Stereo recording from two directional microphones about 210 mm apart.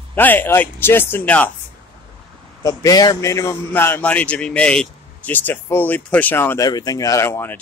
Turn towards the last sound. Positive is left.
turn(degrees=10)  # may be behind; listen again after turning